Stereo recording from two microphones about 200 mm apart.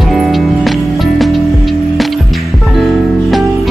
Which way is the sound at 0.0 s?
Centre (ahead or behind).